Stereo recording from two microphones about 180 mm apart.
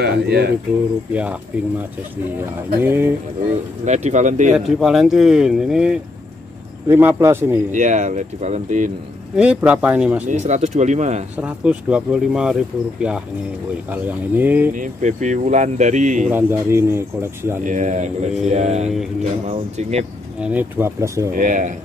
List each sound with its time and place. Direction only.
0.0 s speech: 65° right (ahead or behind)
1.1 s speech: 5° right (ahead or behind)
3.8 s speech: 40° right (ahead or behind)
4.6 s speech: centre (ahead or behind)
7.7 s speech: 40° right (ahead or behind)
9.4 s speech: 5° right (ahead or behind)
10.3 s speech: 40° right (ahead or behind)
11.3 s speech: 5° right (ahead or behind)
14.8 s speech: 45° right (ahead or behind)
16.3 s speech: 15° right (ahead or behind)
17.6 s speech: 45° right (ahead or behind)
20.3 s speech: 10° right (ahead or behind)
21.3 s speech: 45° right (ahead or behind)